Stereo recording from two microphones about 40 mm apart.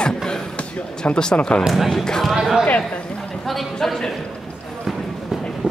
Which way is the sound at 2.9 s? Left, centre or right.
Left.